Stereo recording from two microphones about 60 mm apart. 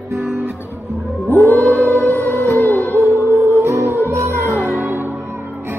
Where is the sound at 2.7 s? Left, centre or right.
Right.